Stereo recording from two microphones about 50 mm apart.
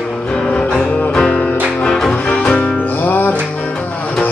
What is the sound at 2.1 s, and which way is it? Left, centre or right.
Music, left.